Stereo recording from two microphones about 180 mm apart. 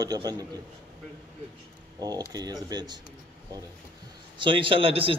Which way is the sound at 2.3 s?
20° right (ahead or behind).